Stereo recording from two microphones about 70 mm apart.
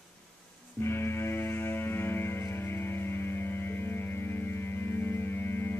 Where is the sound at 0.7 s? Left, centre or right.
Left.